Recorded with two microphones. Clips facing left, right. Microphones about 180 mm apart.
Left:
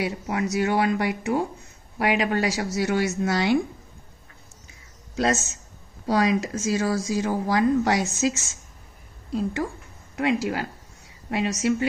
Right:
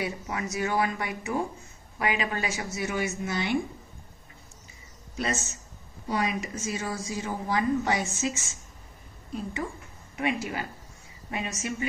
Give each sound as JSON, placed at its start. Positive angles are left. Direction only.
{"t": 0.0, "sound": "a woman's voice", "side_deg": 70}
{"t": 5.1, "sound": "a man's voice", "side_deg": 90}
{"t": 11.2, "sound": "speech", "side_deg": 80}